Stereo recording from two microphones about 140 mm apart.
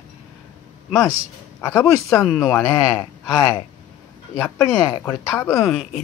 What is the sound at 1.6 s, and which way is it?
Speech, 20° left (ahead or behind).